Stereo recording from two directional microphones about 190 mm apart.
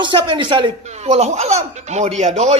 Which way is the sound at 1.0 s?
35° right (ahead or behind).